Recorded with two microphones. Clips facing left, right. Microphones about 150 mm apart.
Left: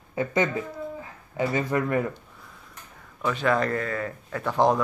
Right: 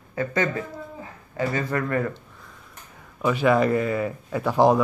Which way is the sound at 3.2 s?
10° right (ahead or behind).